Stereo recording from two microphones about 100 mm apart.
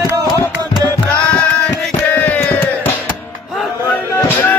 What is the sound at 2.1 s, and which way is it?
Music, 20° left (ahead or behind).